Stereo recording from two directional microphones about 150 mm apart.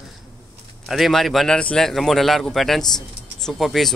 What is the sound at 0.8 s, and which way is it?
Speech, centre (ahead or behind).